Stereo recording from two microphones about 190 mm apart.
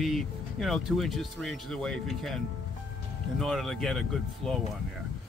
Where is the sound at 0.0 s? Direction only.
Centre (ahead or behind).